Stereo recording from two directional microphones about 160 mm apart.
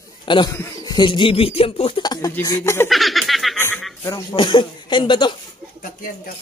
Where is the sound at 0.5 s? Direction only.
20° left (ahead or behind); by 2.0 s 35° left (ahead or behind).